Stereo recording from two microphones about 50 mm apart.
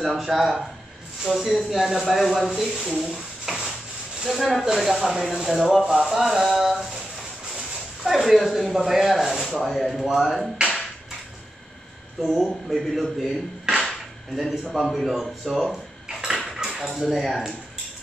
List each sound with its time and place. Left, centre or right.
0.0 s speech: centre
6.6 s a sound: centre
8.0 s speech: centre
12.4 s speech: centre
16.1 s cutlery: centre
16.9 s speech: centre